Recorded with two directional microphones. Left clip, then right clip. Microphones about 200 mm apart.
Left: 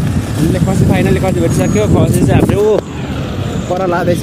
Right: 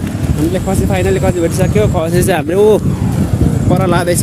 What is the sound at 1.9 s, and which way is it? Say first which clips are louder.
Speech: left 1 dB; 35° right (ahead or behind).